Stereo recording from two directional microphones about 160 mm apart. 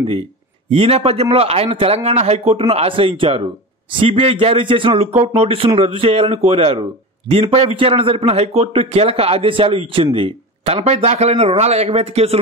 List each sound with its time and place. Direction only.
0.7 s a man's voice: 35° right (ahead or behind)